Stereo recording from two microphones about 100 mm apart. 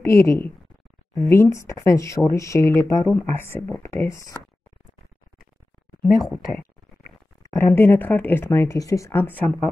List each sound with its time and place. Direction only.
0.0 s speech: 30° left (ahead or behind)
7.5 s speech: 25° left (ahead or behind)